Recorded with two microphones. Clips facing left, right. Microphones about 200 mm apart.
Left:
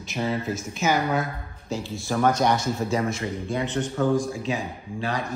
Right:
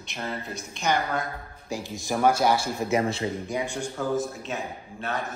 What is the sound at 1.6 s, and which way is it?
Speech, 15° right (ahead or behind).